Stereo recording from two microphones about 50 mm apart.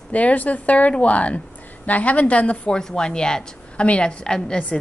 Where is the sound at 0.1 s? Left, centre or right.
Left.